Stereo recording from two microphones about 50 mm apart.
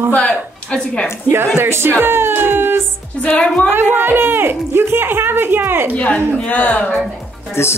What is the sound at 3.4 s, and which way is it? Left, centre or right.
Speech, left.